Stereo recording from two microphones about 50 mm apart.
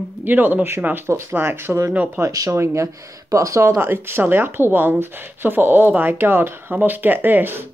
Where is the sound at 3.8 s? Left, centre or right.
Right.